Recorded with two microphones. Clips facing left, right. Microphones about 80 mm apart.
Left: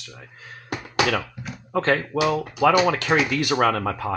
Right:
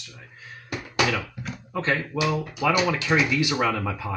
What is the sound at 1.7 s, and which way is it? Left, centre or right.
Speech, left.